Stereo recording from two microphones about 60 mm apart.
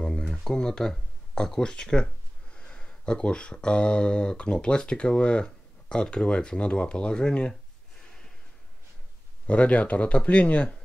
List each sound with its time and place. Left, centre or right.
0.3 s speech: centre
9.5 s speech: left